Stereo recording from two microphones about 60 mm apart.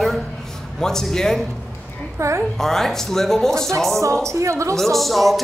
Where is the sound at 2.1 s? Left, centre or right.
Right.